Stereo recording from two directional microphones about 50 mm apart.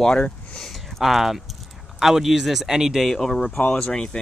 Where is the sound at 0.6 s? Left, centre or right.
Centre.